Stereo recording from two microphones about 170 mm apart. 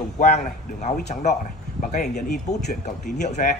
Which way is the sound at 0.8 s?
45° left (ahead or behind).